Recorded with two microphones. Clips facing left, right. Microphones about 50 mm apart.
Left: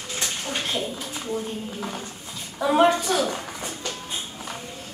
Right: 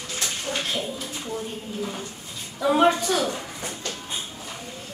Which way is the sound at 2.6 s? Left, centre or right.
Centre.